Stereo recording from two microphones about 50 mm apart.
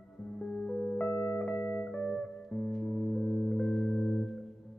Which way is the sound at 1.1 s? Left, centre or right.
Left.